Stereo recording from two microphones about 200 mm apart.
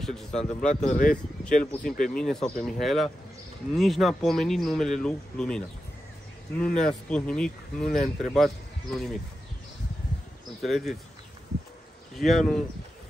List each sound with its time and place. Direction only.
0.0 s speech: 5° left (ahead or behind)
0.8 s speech: 45° left (ahead or behind)
1.7 s speech: 5° left (ahead or behind)
6.6 s speech: 5° left (ahead or behind)
10.6 s speech: centre (ahead or behind)
12.2 s speech: centre (ahead or behind)